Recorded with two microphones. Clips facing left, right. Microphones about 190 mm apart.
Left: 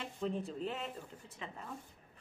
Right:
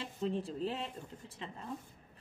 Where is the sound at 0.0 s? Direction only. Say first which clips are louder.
Right 2 dB; 30° right (ahead or behind).